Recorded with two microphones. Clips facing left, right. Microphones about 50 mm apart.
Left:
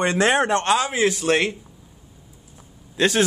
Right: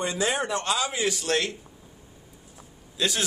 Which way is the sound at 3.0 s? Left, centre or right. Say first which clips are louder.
Left 8 dB; left.